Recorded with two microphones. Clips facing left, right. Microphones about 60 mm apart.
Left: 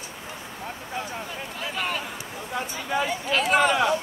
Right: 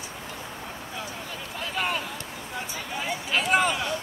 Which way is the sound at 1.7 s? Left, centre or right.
Centre.